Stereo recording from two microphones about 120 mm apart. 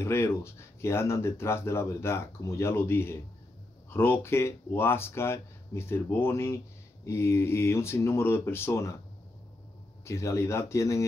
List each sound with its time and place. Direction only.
0.0 s speech: 20° left (ahead or behind)
10.0 s speech: 25° left (ahead or behind)